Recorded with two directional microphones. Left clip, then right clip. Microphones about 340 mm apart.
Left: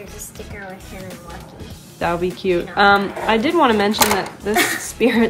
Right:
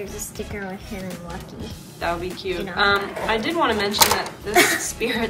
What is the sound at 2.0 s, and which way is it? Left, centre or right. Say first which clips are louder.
Speech: left 5 dB; centre.